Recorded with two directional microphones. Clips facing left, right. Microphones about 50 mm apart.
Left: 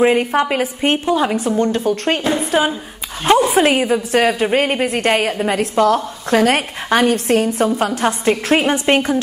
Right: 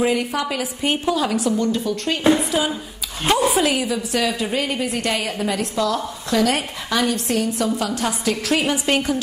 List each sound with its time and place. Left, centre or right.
0.0 s a woman's voice: left
1.0 s a woman's voice: left